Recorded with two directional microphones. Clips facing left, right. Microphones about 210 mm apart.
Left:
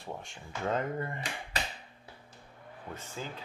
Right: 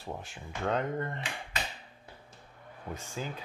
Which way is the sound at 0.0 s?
5° right (ahead or behind).